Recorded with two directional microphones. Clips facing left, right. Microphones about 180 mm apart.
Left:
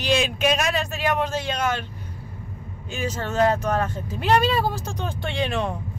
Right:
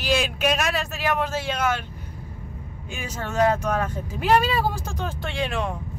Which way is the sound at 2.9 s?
10° right (ahead or behind).